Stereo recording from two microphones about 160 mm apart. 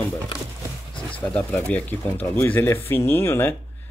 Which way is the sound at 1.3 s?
10° left (ahead or behind).